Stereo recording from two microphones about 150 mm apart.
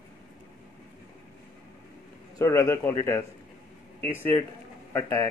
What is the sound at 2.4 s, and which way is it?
Speech, 20° left (ahead or behind).